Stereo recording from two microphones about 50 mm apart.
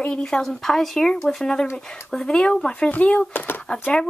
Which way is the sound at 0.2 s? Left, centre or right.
Centre.